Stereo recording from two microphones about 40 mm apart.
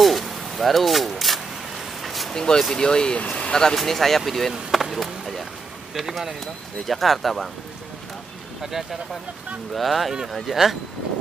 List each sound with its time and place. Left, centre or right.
0.0 s a sound: centre
2.0 s vehicle: centre
2.3 s speech: centre
3.2 s speech: left
3.7 s speech: centre
8.6 s speech: centre